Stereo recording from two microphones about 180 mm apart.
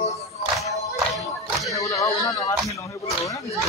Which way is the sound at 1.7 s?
20° left (ahead or behind).